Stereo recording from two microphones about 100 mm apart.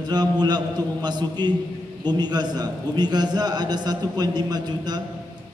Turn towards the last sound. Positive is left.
turn(degrees=-45)  # may be behind; listen again after turning